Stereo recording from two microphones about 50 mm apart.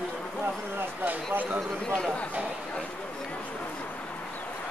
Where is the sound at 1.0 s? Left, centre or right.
Right.